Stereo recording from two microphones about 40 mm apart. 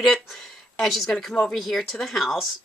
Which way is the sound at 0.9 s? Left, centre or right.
Centre.